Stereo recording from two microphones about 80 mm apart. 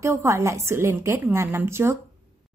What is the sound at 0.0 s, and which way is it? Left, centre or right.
A woman's voice, right.